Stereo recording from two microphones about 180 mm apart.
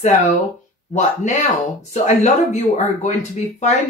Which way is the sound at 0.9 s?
40° left (ahead or behind).